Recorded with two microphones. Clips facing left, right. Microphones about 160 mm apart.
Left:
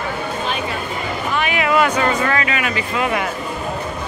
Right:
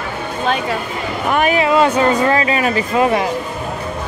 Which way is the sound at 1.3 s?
45° right (ahead or behind).